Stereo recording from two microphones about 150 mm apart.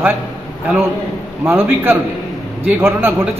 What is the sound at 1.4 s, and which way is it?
A man's voice, 15° right (ahead or behind).